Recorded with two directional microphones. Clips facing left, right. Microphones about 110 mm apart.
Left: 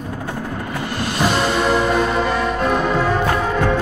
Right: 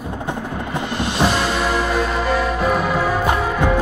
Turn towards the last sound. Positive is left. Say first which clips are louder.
# even
turn(degrees=-10)  # may be behind; listen again after turning